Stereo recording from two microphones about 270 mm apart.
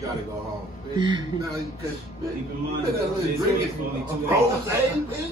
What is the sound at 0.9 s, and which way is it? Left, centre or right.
Speech, centre.